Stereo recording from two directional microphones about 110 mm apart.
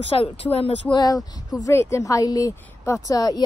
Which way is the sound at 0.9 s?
35° left (ahead or behind).